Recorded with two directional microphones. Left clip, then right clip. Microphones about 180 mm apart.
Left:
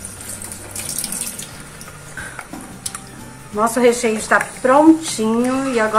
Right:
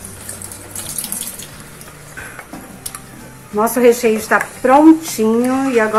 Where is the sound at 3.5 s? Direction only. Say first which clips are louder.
Right 3 dB; 30° right (ahead or behind).